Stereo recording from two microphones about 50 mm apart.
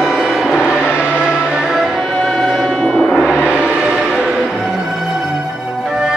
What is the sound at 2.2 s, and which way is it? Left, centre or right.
Music, centre.